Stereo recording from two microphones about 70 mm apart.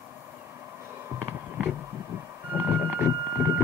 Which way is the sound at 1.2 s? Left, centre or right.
Right.